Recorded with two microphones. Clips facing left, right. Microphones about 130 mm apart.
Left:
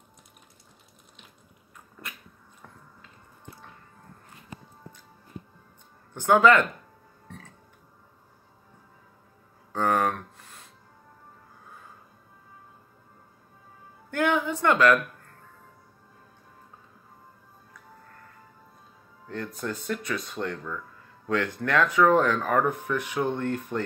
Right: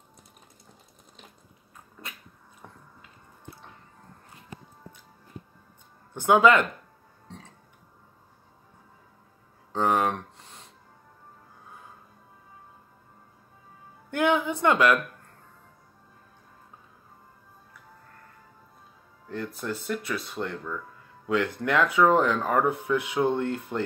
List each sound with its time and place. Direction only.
6.1 s speech: 15° right (ahead or behind)
7.2 s music: 20° right (ahead or behind)
9.7 s a sound: 20° right (ahead or behind)
14.1 s a sound: 15° right (ahead or behind)
19.2 s music: 5° right (ahead or behind)
19.6 s speech: 5° right (ahead or behind)